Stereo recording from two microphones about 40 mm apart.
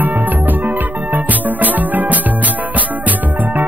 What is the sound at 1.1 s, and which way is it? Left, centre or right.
Music, right.